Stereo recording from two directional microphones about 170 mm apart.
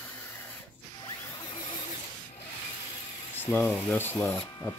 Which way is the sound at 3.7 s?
10° left (ahead or behind).